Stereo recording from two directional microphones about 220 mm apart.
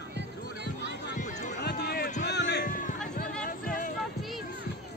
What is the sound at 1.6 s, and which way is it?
Run, 45° left (ahead or behind).